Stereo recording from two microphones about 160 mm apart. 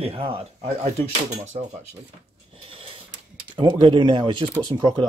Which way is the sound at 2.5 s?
35° right (ahead or behind).